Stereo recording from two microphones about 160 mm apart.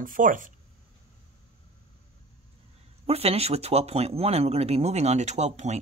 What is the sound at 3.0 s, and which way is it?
Speech, 40° right (ahead or behind).